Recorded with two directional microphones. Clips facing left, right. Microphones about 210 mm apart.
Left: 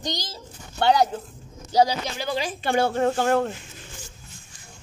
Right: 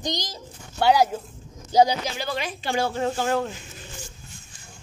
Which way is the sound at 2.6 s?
60° left (ahead or behind).